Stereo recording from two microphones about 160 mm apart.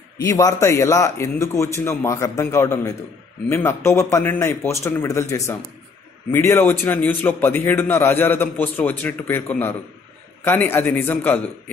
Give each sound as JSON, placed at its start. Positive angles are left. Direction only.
{"t": 0.3, "sound": "a man's voice", "side_deg": 20}